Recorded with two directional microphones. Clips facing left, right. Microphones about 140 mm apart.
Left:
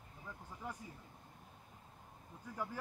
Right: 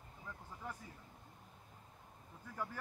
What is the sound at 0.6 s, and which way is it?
Speech, 15° left (ahead or behind).